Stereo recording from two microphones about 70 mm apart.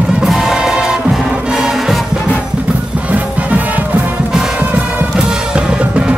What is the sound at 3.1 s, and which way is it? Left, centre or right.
Music, right.